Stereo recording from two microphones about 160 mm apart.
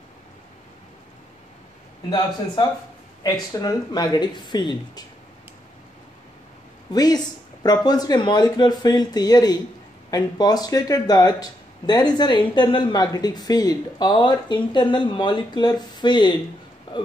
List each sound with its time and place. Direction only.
2.0 s speech: 25° left (ahead or behind)
6.9 s speech: 25° left (ahead or behind)